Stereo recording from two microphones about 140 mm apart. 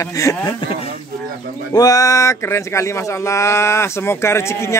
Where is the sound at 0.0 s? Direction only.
25° left (ahead or behind).